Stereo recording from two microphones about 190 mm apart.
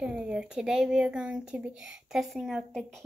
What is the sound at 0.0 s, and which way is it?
Speech, 5° right (ahead or behind).